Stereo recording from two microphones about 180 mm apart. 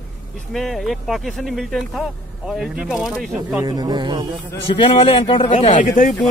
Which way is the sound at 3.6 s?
20° right (ahead or behind).